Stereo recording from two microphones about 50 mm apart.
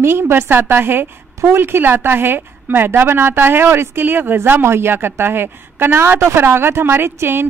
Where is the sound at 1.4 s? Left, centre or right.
Right.